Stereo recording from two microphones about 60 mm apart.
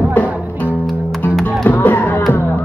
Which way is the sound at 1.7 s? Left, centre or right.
Left.